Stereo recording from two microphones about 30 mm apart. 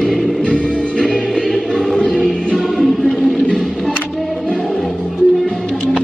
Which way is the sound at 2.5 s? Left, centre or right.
Centre.